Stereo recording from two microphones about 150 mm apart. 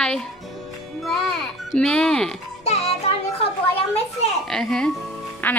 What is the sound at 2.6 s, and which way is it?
A child's voice, 45° left (ahead or behind).